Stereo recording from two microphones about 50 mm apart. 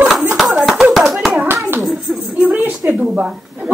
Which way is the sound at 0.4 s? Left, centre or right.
Centre.